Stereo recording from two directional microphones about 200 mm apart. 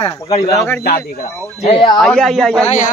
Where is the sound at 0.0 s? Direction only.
15° left (ahead or behind).